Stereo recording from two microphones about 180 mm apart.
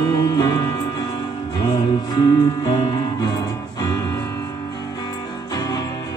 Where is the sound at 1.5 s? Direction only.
25° left (ahead or behind).